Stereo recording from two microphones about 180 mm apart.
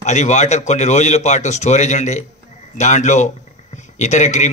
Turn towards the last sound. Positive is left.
turn(degrees=40)  # may be behind; listen again after turning